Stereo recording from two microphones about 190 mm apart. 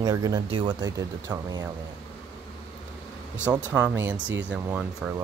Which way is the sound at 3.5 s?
5° right (ahead or behind).